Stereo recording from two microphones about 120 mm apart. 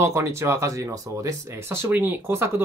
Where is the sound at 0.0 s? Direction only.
25° right (ahead or behind).